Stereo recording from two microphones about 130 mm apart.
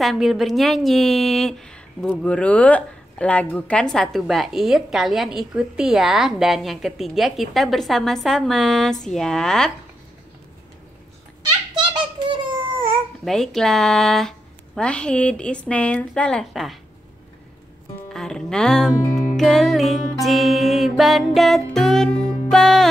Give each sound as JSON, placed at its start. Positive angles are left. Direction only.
{"t": 0.0, "sound": "a woman's voice", "side_deg": 0}
{"t": 11.8, "sound": "a sound", "side_deg": -35}
{"t": 13.2, "sound": "a woman's voice", "side_deg": 0}
{"t": 18.1, "sound": "music", "side_deg": 5}
{"t": 19.3, "sound": "a woman's voice", "side_deg": 5}
{"t": 22.5, "sound": "music", "side_deg": 5}